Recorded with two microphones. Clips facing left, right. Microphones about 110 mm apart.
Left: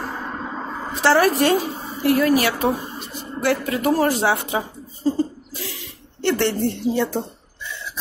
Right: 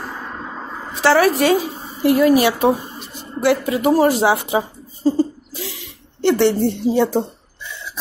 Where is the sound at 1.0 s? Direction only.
5° right (ahead or behind).